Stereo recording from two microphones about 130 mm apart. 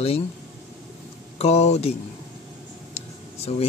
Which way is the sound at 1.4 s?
55° left (ahead or behind).